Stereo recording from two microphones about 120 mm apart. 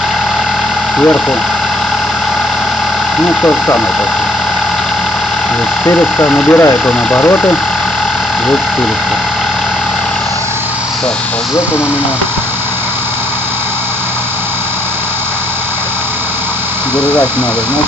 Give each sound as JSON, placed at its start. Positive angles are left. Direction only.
{"t": 0.9, "sound": "speech", "side_deg": 5}
{"t": 3.2, "sound": "speech", "side_deg": 5}
{"t": 5.9, "sound": "speech", "side_deg": 5}
{"t": 17.0, "sound": "speech", "side_deg": -15}